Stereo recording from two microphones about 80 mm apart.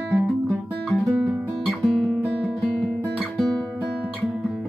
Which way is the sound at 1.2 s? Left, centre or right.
Centre.